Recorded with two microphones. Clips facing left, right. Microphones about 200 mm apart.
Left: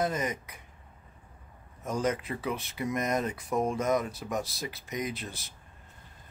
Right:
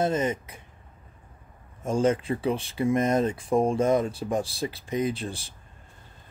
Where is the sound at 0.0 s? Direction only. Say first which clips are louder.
Right 5 dB; 25° right (ahead or behind).